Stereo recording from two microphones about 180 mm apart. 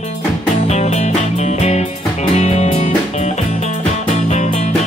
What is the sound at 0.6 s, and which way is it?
Music, 40° left (ahead or behind).